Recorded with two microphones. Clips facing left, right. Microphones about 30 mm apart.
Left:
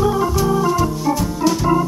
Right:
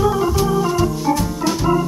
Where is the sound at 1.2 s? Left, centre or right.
Centre.